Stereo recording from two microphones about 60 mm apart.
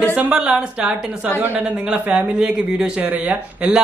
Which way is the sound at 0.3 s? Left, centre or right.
Centre.